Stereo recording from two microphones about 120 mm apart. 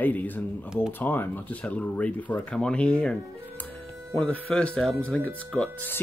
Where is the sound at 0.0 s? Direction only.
15° left (ahead or behind).